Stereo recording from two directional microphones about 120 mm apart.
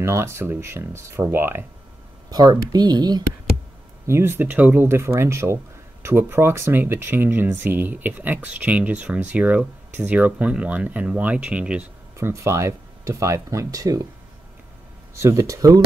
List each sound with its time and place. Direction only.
0.0 s speech: 20° right (ahead or behind)
2.3 s speech: 35° right (ahead or behind)
4.1 s speech: 20° right (ahead or behind)
12.2 s speech: 25° right (ahead or behind)
15.1 s speech: 25° right (ahead or behind)